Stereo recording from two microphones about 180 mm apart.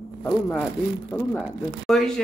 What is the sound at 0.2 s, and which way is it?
A man's voice, 5° left (ahead or behind).